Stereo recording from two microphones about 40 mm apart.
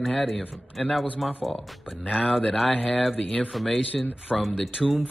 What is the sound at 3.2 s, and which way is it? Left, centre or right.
Speech, left.